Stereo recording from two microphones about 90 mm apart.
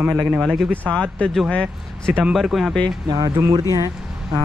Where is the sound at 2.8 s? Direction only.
45° right (ahead or behind).